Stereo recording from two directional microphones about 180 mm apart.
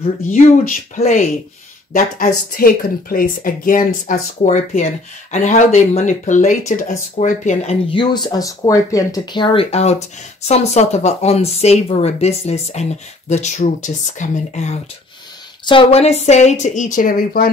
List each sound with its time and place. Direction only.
0.3 s speech: 40° left (ahead or behind)
2.1 s a woman's voice: 50° left (ahead or behind)
7.9 s speech: 25° left (ahead or behind)
15.6 s speech: 30° left (ahead or behind); by 17.5 s 55° left (ahead or behind)